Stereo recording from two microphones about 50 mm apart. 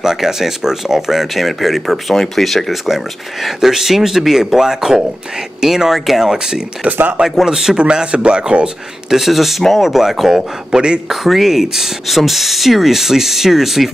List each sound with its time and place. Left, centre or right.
0.0 s speech: centre
6.9 s speech: right
7.2 s speech: centre
7.7 s speech: centre
9.1 s speech: centre
11.2 s speech: centre